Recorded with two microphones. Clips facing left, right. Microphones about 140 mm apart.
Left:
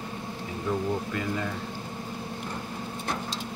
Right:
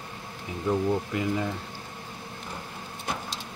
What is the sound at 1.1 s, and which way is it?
Speech, 15° right (ahead or behind).